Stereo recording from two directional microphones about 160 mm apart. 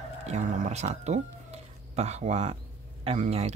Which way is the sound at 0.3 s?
45° right (ahead or behind).